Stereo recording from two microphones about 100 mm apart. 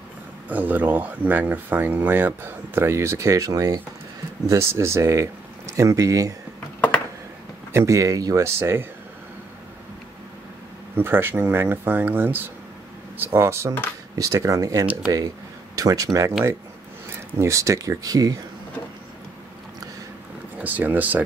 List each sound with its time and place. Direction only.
0.5 s speech: 15° right (ahead or behind); by 6.3 s 35° right (ahead or behind)
7.7 s speech: 30° right (ahead or behind)
11.0 s speech: 20° right (ahead or behind)
17.4 s speech: 30° right (ahead or behind)
20.6 s speech: 20° right (ahead or behind)